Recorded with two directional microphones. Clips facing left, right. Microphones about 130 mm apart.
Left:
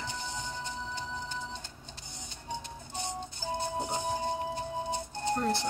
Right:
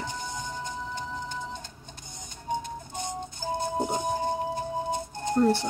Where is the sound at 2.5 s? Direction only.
45° right (ahead or behind).